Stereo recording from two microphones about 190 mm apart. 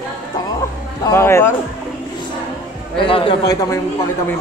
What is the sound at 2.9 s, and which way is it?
Speech, 25° left (ahead or behind).